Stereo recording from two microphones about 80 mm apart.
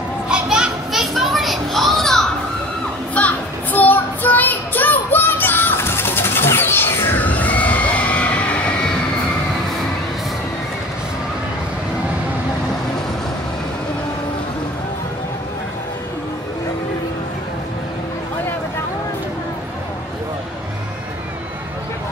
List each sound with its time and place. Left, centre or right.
0.3 s children playing: centre
3.2 s child singing: centre